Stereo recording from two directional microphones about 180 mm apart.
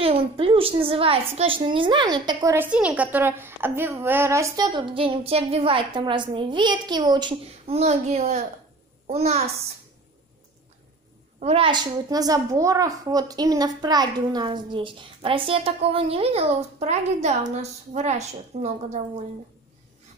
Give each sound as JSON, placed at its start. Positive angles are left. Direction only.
{"t": 0.0, "sound": "a woman's voice", "side_deg": -30}
{"t": 11.3, "sound": "a woman's voice", "side_deg": -35}